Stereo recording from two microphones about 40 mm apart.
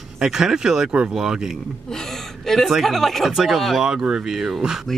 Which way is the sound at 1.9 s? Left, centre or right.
Centre.